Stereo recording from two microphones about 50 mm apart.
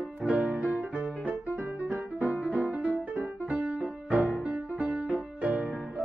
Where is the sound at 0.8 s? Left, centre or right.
Right.